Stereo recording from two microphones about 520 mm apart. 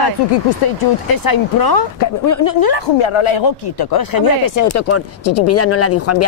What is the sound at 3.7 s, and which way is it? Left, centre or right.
Speech, left.